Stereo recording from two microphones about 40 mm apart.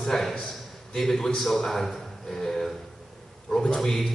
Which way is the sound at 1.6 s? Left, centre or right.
Centre.